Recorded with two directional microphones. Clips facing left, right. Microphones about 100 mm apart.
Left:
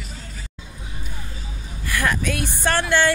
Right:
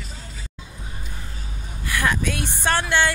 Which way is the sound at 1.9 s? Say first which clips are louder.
Even; 15° right (ahead or behind).